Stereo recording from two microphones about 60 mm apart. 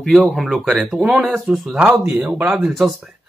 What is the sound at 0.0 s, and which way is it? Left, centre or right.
Speech, centre.